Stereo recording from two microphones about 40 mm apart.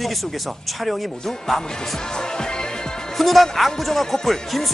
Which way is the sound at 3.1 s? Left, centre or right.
Centre.